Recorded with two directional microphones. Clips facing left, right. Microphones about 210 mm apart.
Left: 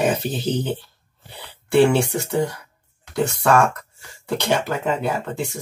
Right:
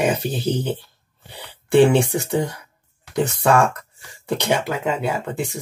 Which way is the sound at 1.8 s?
20° right (ahead or behind).